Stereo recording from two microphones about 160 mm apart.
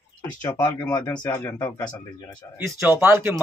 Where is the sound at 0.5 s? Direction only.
25° left (ahead or behind).